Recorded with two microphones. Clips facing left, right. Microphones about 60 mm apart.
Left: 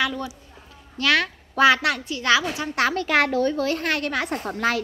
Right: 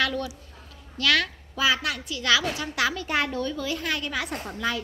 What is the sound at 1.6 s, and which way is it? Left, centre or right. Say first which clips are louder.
Speech: left 7 dB; left.